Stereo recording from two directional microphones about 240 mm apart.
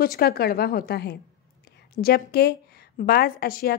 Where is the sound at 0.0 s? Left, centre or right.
Left.